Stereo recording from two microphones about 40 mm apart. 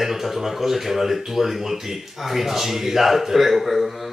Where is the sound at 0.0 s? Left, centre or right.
Centre.